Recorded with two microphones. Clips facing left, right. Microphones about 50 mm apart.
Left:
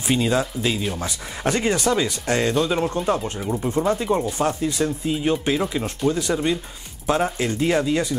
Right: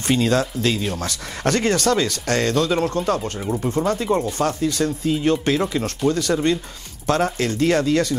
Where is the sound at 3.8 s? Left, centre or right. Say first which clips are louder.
Right 1 dB; centre.